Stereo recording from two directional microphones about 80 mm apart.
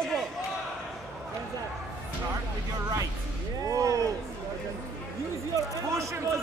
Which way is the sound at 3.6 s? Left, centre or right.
Right.